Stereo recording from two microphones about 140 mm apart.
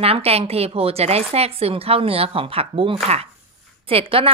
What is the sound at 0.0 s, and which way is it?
A woman's voice, 45° right (ahead or behind).